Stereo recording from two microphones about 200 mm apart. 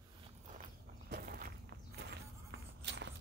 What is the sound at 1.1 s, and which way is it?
Walk, 45° right (ahead or behind).